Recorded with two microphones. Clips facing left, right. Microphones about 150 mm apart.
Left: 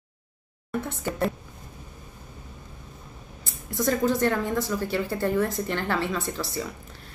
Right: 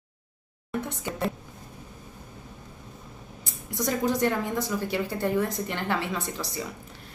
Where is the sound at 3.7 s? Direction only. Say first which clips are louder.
Left 3 dB; 15° right (ahead or behind).